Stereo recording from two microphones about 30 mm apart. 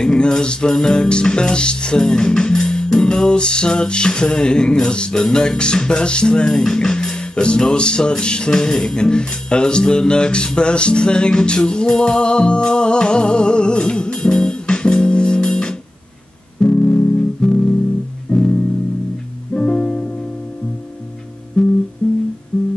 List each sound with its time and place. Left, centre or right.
0.0 s music: left
21.6 s music: left